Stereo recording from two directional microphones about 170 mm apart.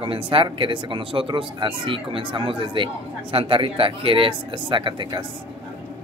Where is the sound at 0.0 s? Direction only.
30° right (ahead or behind).